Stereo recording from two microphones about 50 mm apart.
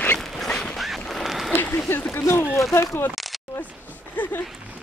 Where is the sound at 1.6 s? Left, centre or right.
Left.